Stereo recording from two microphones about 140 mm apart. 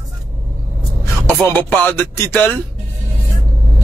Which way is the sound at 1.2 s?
10° left (ahead or behind).